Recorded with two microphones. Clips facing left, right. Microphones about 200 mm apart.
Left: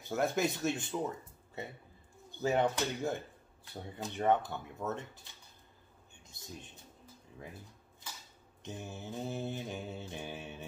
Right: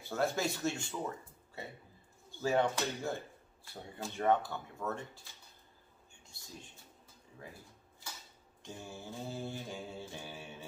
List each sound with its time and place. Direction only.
0.0 s speech: 20° left (ahead or behind)
2.3 s mantra: 20° left (ahead or behind)
6.2 s speech: 20° left (ahead or behind)
8.6 s mantra: 20° left (ahead or behind)